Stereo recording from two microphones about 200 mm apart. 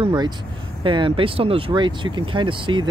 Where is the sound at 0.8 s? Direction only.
25° right (ahead or behind).